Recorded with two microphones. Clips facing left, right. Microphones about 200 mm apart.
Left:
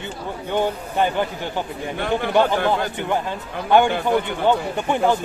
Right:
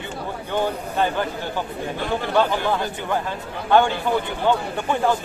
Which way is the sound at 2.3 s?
15° left (ahead or behind).